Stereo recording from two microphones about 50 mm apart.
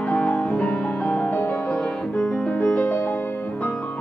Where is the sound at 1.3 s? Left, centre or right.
Left.